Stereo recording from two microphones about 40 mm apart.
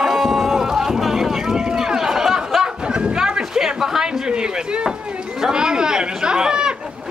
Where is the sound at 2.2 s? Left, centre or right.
Centre.